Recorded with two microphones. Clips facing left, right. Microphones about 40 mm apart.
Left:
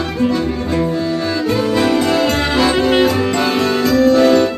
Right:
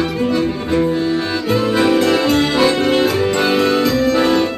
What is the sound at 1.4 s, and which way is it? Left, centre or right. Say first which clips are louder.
Music: right 1 dB; centre.